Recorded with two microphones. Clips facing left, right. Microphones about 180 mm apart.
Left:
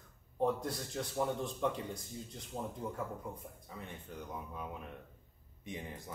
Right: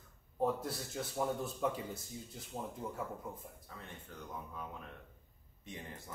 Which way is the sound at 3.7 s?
15° left (ahead or behind).